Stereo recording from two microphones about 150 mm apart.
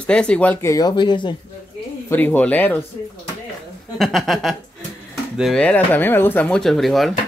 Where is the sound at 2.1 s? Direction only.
10° left (ahead or behind).